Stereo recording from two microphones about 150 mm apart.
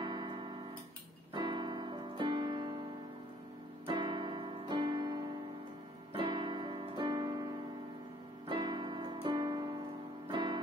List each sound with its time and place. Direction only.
0.0 s music: 30° right (ahead or behind)
1.3 s keyboard: 30° right (ahead or behind)
3.8 s keyboard: 30° right (ahead or behind)
6.1 s music: 30° right (ahead or behind)
8.5 s music: 30° right (ahead or behind)